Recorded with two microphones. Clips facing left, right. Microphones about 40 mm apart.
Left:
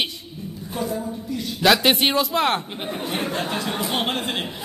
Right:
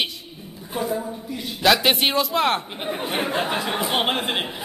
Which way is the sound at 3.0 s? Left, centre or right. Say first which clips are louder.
Right 2 dB; centre.